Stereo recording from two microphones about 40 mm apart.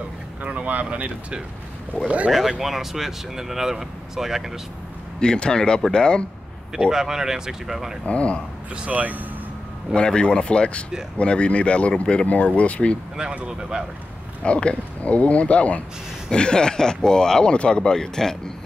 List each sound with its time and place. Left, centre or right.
0.4 s a sound: right
0.7 s speech: right
2.6 s speech: centre
5.2 s speech: centre
6.9 s speech: centre
8.0 s speech: left
8.9 s speech: right
9.9 s speech: left
13.5 s speech: centre
14.4 s speech: left
16.3 s speech: left